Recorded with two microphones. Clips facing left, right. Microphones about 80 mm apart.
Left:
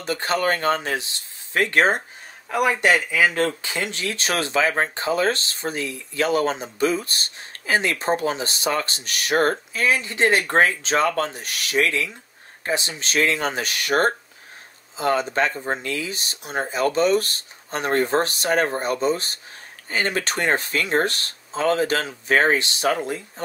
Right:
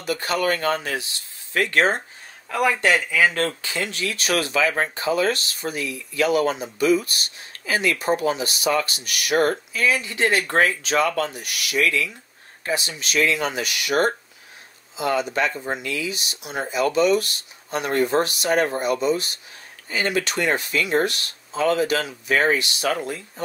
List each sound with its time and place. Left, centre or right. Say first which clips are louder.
0.0 s speech: left 1 dB; left